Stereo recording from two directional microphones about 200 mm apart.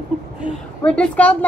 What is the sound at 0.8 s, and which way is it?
Speech, 5° left (ahead or behind).